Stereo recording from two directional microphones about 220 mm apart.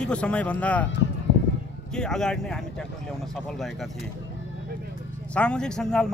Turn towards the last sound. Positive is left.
turn(degrees=5)  # may be behind; listen again after turning